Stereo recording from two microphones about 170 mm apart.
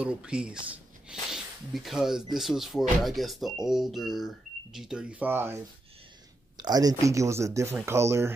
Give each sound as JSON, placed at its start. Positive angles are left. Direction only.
{"t": 0.0, "sound": "speech", "side_deg": -5}
{"t": 6.5, "sound": "speech", "side_deg": -25}